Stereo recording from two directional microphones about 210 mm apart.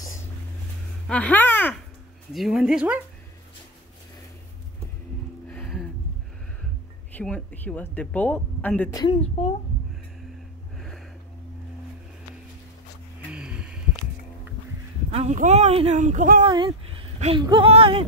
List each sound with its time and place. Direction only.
1.0 s speech: 5° left (ahead or behind)
5.5 s a sound: 5° left (ahead or behind)
7.2 s speech: 5° left (ahead or behind)
9.1 s speech: 30° left (ahead or behind)
13.3 s a sound: 5° right (ahead or behind)
15.0 s speech: 30° right (ahead or behind)
16.4 s speech: 25° right (ahead or behind)